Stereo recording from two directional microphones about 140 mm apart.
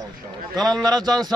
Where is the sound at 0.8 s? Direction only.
30° right (ahead or behind).